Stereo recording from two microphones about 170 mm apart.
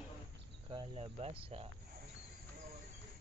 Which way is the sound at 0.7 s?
30° right (ahead or behind).